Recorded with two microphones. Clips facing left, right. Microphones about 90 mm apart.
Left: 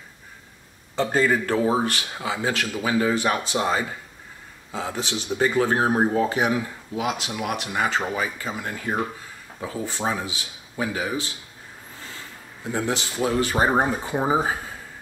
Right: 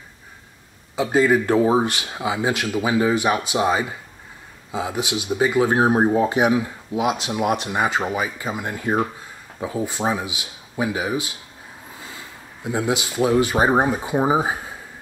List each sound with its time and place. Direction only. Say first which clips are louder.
0.9 s speech: right 4 dB; 10° right (ahead or behind)
12.6 s speech: right 3 dB; 15° right (ahead or behind)